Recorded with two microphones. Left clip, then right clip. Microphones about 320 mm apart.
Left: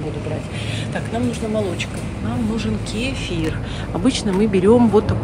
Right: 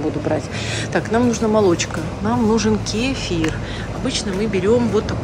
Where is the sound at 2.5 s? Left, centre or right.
Centre.